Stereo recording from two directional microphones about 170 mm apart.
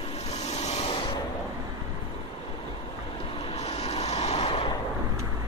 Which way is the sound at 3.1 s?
30° left (ahead or behind).